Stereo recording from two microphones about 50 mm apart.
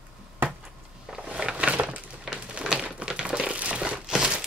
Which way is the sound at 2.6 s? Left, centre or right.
Centre.